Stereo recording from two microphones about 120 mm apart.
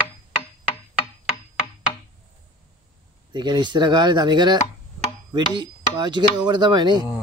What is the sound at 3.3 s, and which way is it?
A man's voice, 40° right (ahead or behind).